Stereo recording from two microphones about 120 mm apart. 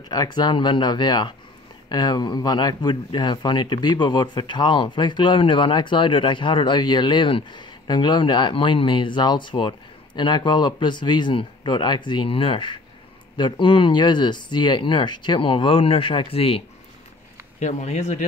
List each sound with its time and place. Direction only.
0.1 s speech: 35° left (ahead or behind); by 16.6 s 55° left (ahead or behind)
17.6 s speech: 75° left (ahead or behind)